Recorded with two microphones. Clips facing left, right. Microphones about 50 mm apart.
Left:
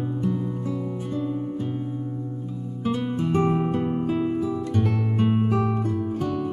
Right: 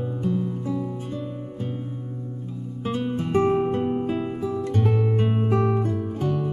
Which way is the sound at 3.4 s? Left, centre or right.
Centre.